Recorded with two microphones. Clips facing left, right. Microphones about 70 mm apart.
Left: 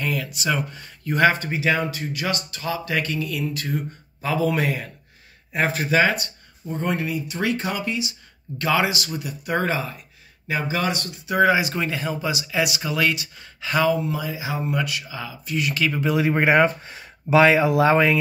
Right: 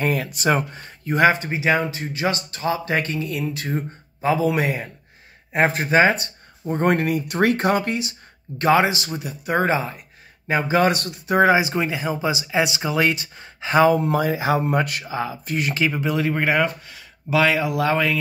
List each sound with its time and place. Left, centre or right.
0.0 s speech: right
1.0 s speech: right
5.5 s speech: right
6.6 s speech: right
8.5 s speech: right
10.5 s speech: right
11.3 s speech: right
13.9 s speech: right
15.9 s speech: centre
16.2 s speech: centre